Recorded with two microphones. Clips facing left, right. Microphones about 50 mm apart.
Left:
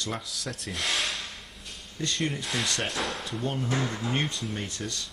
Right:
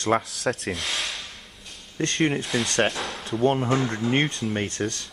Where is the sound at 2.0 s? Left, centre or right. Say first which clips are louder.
Right 7 dB; right.